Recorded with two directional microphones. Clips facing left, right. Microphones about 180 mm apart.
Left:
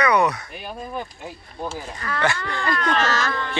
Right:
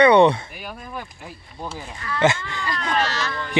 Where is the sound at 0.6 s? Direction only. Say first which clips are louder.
Left 3 dB; 25° left (ahead or behind).